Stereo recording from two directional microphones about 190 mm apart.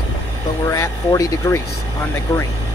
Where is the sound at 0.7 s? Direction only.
15° left (ahead or behind).